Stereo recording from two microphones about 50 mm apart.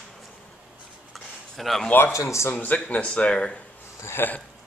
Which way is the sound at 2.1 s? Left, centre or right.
Left.